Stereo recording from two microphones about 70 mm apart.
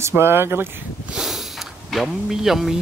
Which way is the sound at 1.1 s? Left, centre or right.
Centre.